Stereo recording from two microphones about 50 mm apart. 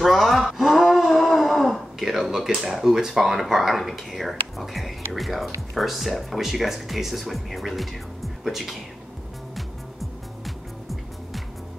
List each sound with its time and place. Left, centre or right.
0.0 s speech: centre
10.4 s music: centre